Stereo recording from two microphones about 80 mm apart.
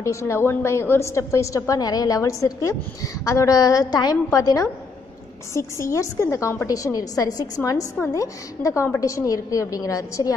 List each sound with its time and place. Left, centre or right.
0.0 s a woman's voice: left